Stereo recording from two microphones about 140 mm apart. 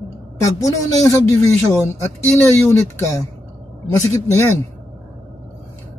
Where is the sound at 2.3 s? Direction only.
20° left (ahead or behind).